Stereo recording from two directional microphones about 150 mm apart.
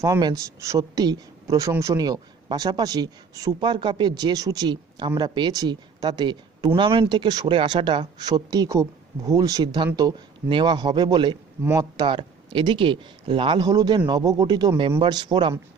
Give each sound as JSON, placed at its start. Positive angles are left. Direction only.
{"t": 0.0, "sound": "a man's voice", "side_deg": -20}